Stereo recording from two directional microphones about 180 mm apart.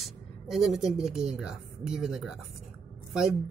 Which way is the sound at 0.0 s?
Centre (ahead or behind).